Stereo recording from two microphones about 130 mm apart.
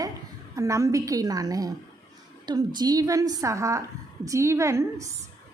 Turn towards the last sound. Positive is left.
turn(degrees=-20)  # may be behind; listen again after turning